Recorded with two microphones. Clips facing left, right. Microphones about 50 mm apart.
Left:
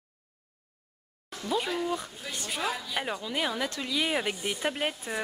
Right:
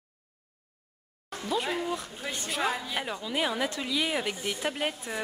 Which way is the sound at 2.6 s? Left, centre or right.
Centre.